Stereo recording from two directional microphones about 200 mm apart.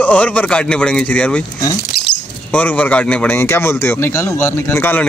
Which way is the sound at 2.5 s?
10° left (ahead or behind).